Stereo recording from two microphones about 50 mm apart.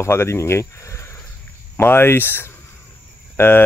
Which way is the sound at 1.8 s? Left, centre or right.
Left.